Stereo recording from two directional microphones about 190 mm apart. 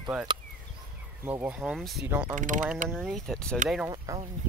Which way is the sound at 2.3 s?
40° right (ahead or behind).